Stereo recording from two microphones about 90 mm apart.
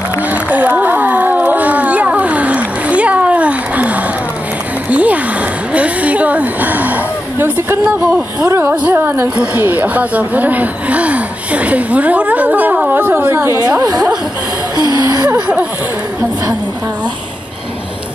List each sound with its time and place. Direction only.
0.3 s a sound: 20° right (ahead or behind)
8.5 s a woman's voice: 25° right (ahead or behind)
13.7 s speech: 40° right (ahead or behind)
14.9 s music: 45° right (ahead or behind)
15.2 s a woman's voice: 15° right (ahead or behind)